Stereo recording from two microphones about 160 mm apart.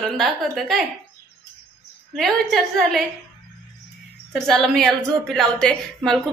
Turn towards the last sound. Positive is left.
turn(degrees=5)  # may be behind; listen again after turning